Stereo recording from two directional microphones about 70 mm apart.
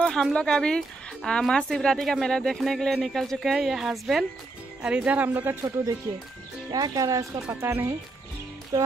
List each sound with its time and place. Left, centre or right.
0.0 s a woman's voice: centre
4.8 s speech: centre
5.3 s speech: right
6.7 s speech: right
7.6 s speech: right
8.7 s speech: right